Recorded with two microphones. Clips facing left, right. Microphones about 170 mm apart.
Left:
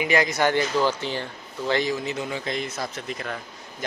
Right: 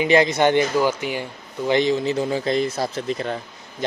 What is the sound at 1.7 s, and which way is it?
Speech, 25° right (ahead or behind).